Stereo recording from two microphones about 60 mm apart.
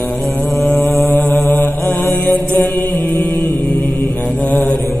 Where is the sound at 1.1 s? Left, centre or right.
Left.